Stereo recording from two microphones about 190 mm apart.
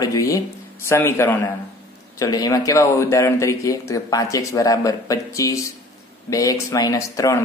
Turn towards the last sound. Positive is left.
turn(degrees=15)  # may be behind; listen again after turning